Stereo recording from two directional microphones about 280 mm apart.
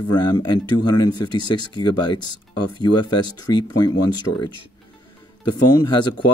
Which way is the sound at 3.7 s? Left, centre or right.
Left.